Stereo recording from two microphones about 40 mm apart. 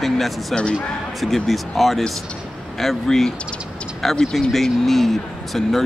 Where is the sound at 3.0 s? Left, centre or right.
Centre.